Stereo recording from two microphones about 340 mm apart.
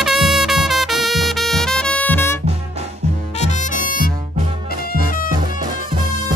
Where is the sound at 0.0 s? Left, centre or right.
Centre.